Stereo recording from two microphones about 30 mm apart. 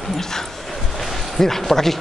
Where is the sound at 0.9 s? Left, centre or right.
Centre.